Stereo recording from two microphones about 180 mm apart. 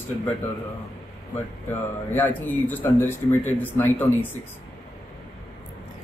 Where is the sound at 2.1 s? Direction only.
10° left (ahead or behind).